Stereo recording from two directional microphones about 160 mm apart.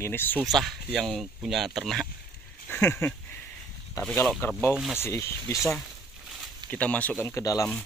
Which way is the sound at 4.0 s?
20° left (ahead or behind).